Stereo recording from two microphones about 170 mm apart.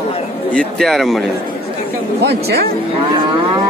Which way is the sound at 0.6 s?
Centre (ahead or behind).